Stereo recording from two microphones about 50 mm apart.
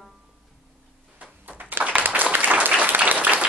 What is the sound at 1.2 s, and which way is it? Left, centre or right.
Applause, right.